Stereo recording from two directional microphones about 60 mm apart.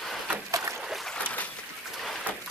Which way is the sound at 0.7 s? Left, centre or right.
Centre.